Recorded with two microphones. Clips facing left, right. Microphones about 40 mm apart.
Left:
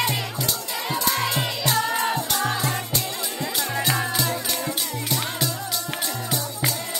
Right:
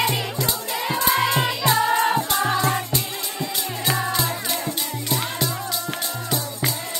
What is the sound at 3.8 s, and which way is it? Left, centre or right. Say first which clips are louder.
Music: right 3 dB; centre.